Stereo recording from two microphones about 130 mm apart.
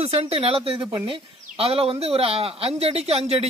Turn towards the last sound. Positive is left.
turn(degrees=-50)  # may be behind; listen again after turning